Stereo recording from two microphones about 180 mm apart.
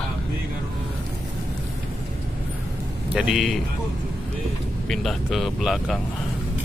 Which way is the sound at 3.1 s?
5° right (ahead or behind).